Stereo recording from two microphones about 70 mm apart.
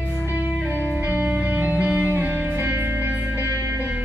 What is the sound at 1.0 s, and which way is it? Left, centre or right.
Music, right.